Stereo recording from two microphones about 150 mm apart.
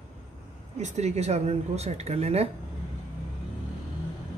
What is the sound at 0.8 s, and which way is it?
Speech, 50° right (ahead or behind).